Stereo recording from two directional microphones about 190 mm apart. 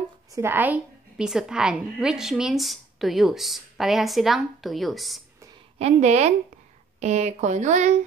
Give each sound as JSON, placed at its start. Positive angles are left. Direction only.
{"t": 0.3, "sound": "a woman's voice", "side_deg": -15}
{"t": 5.8, "sound": "speech", "side_deg": -35}